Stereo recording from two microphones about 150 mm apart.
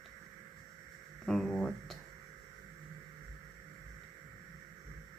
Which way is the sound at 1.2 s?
5° left (ahead or behind).